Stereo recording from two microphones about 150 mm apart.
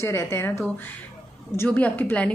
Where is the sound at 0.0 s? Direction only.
20° left (ahead or behind).